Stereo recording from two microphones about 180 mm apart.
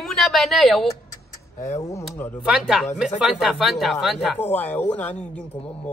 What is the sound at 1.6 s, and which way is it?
Speech, 15° left (ahead or behind).